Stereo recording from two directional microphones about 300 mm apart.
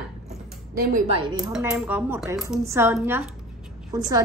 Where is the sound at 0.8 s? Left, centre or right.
Right.